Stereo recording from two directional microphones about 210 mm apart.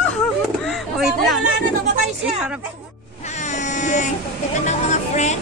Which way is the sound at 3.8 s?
35° left (ahead or behind).